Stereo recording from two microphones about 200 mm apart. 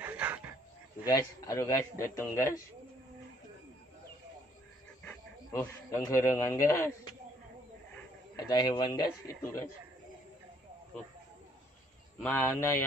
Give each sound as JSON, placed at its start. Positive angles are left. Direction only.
{"t": 0.0, "sound": "dog", "side_deg": -10}
{"t": 1.0, "sound": "a man's voice", "side_deg": 15}
{"t": 5.0, "sound": "speech", "side_deg": 10}
{"t": 8.5, "sound": "a man's voice", "side_deg": 20}
{"t": 12.2, "sound": "a man's voice", "side_deg": 10}